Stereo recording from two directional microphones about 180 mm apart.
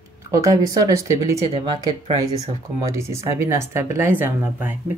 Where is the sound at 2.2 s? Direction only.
15° right (ahead or behind).